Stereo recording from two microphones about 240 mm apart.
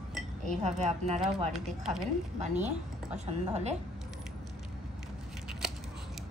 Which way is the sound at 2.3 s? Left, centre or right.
Right.